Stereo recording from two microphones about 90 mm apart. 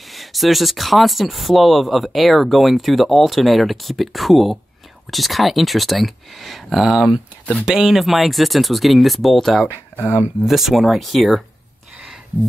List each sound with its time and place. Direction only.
0.1 s speech: centre (ahead or behind)
9.7 s speech: 25° left (ahead or behind)
10.4 s speech: centre (ahead or behind)